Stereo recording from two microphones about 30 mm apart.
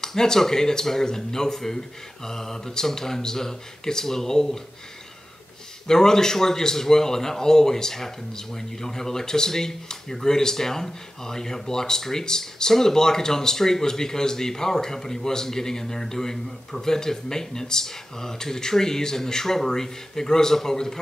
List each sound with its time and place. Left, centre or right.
0.0 s a man's voice: centre
5.9 s a man's voice: centre